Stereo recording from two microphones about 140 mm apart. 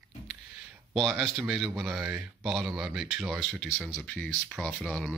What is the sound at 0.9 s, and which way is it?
Speech, centre (ahead or behind).